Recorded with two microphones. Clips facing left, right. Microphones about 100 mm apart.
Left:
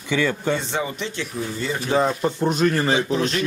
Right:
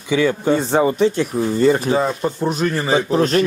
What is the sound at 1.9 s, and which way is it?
Speech, 5° right (ahead or behind).